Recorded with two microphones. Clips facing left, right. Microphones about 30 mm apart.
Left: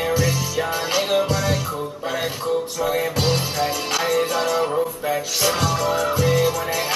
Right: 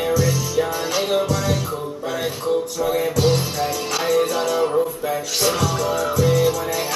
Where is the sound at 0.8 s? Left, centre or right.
Centre.